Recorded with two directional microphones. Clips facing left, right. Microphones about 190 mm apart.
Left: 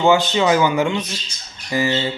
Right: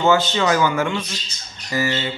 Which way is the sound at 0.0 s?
15° left (ahead or behind).